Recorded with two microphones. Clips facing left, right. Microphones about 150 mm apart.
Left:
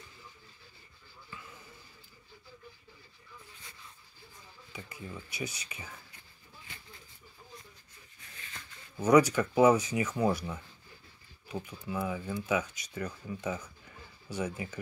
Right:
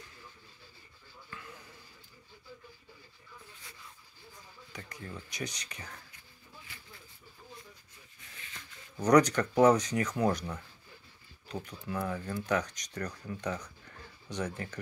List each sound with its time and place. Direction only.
4.7 s speech: 5° left (ahead or behind)
8.9 s speech: 5° left (ahead or behind)